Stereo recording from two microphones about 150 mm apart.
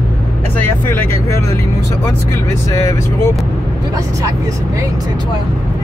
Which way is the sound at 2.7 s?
20° left (ahead or behind).